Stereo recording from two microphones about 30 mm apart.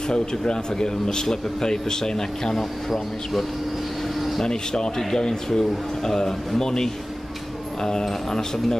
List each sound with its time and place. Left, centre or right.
0.1 s speech: left
2.5 s speech: centre
4.5 s speech: left